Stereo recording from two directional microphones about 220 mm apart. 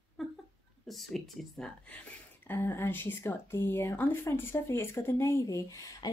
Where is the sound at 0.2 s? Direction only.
Centre (ahead or behind).